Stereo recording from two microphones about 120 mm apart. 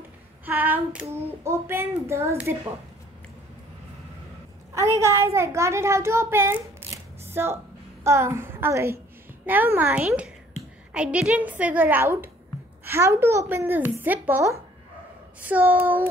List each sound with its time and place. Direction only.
0.5 s speech: 15° right (ahead or behind)
4.7 s a child's voice: 25° right (ahead or behind)
15.4 s speech: 15° right (ahead or behind)